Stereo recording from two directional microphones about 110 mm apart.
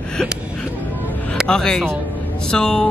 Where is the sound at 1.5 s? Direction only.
5° left (ahead or behind).